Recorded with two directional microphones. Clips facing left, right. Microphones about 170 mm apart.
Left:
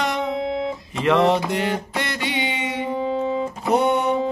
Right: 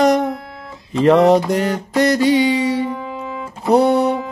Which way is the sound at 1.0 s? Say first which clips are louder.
Right 7 dB; 40° right (ahead or behind).